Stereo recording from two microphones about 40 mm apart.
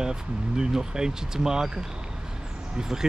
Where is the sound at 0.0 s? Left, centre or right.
Centre.